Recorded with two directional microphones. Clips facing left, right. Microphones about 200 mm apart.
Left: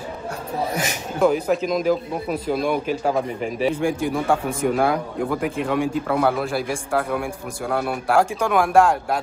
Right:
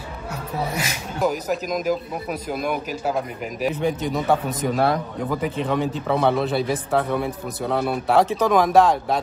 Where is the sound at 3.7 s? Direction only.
10° left (ahead or behind).